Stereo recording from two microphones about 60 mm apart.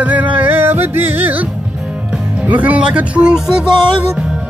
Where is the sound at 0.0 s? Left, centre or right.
Right.